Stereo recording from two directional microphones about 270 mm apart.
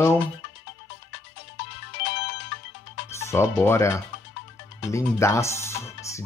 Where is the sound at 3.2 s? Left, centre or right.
Centre.